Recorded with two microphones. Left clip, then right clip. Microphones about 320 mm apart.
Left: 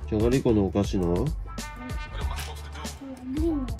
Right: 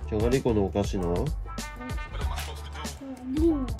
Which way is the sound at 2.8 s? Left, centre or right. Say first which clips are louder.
Right 1 dB; centre.